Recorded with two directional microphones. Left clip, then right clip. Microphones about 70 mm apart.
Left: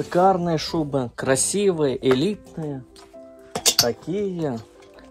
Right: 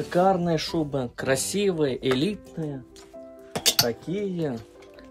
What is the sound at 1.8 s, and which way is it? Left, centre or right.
Speech, left.